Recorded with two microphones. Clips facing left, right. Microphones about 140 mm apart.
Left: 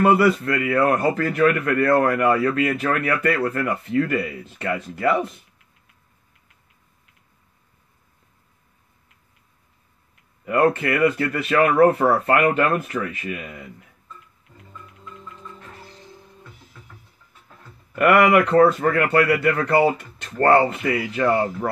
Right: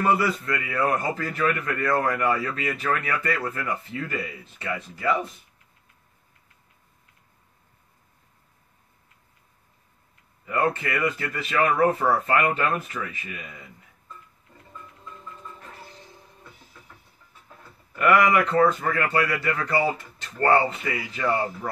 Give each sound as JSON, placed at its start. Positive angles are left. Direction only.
{"t": 0.0, "sound": "speech", "side_deg": 60}
{"t": 10.4, "sound": "speech", "side_deg": 65}
{"t": 17.9, "sound": "speech", "side_deg": 65}